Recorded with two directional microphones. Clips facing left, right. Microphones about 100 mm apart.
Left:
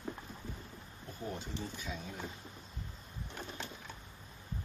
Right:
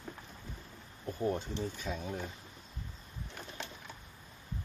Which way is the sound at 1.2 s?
45° right (ahead or behind).